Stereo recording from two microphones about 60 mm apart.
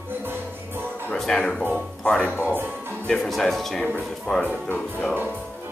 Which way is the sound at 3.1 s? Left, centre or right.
Centre.